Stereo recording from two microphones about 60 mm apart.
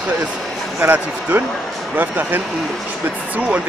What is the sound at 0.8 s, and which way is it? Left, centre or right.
Speech, right.